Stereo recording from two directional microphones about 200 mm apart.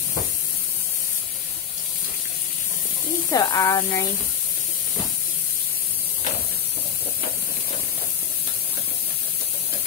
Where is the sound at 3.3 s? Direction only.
15° left (ahead or behind).